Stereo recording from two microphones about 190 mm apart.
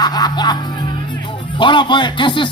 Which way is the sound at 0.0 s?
20° left (ahead or behind).